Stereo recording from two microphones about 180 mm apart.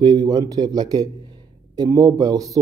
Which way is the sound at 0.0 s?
25° right (ahead or behind).